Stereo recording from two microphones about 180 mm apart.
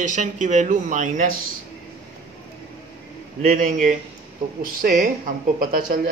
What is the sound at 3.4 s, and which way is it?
Speech, 50° right (ahead or behind).